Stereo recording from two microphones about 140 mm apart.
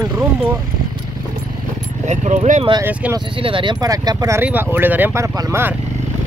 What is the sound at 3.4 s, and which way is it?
Speech, 40° right (ahead or behind).